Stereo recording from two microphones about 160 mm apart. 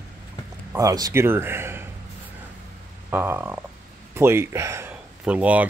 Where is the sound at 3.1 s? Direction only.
15° right (ahead or behind).